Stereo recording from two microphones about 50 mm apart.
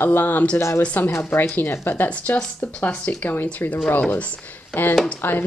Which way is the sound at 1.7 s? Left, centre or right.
Left.